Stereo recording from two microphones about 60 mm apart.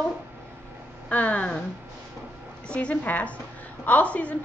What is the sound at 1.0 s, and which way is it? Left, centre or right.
Speech, left.